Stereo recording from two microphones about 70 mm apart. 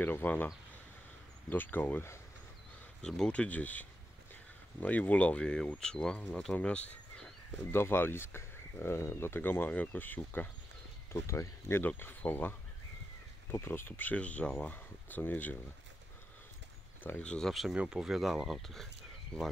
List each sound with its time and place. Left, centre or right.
0.0 s speech: left
1.5 s speech: left
3.0 s speech: centre
7.7 s speech: left
11.2 s speech: left
11.8 s speech: left
17.2 s speech: centre
17.5 s speech: centre